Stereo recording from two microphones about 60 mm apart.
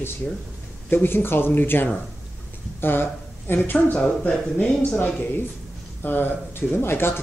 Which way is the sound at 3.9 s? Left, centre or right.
Centre.